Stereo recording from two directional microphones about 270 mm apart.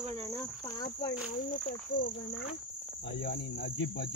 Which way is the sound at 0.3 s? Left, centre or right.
Centre.